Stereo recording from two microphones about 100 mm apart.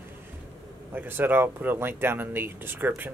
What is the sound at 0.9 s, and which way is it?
Speech, 20° right (ahead or behind).